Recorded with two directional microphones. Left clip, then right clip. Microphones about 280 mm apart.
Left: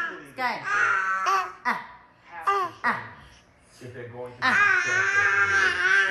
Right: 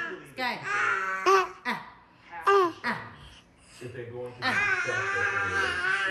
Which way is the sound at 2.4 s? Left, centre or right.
Right.